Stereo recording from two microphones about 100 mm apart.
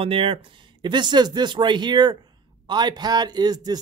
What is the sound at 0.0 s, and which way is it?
Speech, 60° right (ahead or behind).